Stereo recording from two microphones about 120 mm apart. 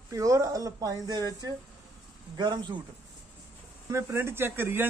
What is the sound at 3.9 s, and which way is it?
Speech, 20° right (ahead or behind).